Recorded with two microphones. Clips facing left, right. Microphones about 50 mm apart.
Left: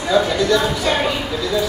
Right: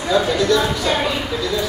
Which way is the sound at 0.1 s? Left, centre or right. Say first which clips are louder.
Even; centre.